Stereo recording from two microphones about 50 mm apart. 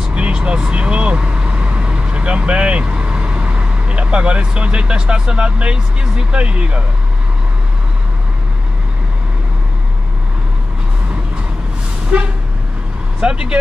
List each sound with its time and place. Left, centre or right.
0.1 s speech: right
12.1 s speech: right